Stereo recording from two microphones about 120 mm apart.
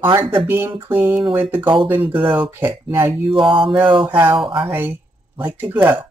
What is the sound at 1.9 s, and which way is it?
Speech, 45° right (ahead or behind).